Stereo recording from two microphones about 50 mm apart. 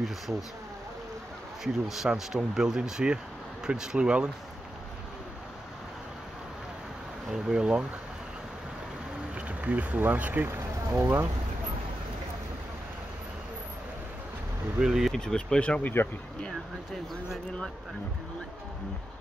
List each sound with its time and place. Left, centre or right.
1.6 s speech: centre
7.2 s speech: centre
9.6 s speech: right
10.5 s speech: right
14.8 s speech: centre
15.1 s speech: centre
15.8 s speech: left